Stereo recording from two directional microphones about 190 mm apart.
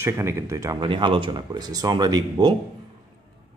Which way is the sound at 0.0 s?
15° right (ahead or behind).